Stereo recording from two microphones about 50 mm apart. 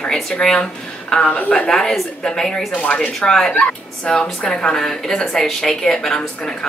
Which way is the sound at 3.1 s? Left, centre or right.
Centre.